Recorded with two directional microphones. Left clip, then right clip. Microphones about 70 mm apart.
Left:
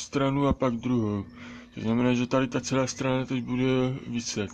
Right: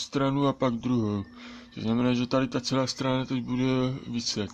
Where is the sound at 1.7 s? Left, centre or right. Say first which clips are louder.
Left 1 dB; right.